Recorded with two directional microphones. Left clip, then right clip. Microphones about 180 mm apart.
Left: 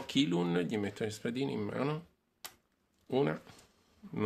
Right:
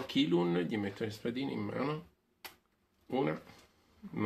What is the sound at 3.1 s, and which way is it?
Speech, 50° left (ahead or behind).